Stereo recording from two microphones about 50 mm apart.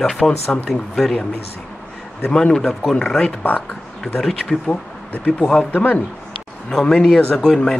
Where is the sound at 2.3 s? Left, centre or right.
Centre.